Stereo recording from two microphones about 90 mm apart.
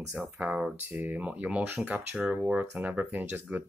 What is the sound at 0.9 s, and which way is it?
Speech, 20° right (ahead or behind).